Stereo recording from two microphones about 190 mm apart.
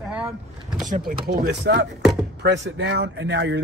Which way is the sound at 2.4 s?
65° right (ahead or behind).